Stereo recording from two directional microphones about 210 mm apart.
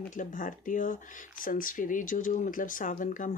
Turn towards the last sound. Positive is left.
turn(degrees=40)  # may be behind; listen again after turning